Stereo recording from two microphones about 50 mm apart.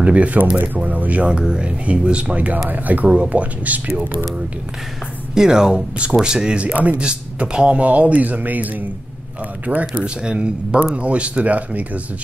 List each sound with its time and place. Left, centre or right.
0.0 s speech: right
5.3 s speech: centre
6.6 s speech: right
7.0 s speech: centre; by 9.8 s right
10.0 s speech: centre